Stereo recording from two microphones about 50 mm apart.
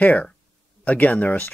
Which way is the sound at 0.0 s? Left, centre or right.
Left.